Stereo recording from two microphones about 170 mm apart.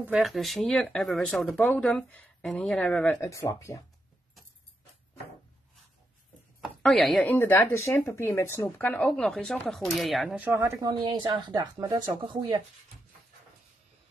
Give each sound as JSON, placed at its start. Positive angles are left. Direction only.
{"t": 0.0, "sound": "speech", "side_deg": 0}
{"t": 3.2, "sound": "speech", "side_deg": 20}
{"t": 6.6, "sound": "speech", "side_deg": 0}
{"t": 7.2, "sound": "speech", "side_deg": 15}